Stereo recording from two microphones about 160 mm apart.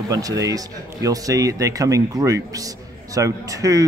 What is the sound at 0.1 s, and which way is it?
Speech, 20° right (ahead or behind).